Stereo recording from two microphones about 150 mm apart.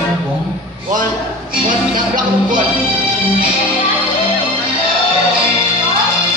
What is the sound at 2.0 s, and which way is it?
Music, 60° right (ahead or behind).